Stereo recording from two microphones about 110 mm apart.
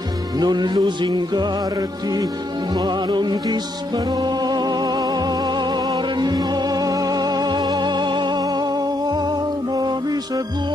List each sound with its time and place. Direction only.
0.4 s music: 40° right (ahead or behind)
9.8 s music: 35° right (ahead or behind)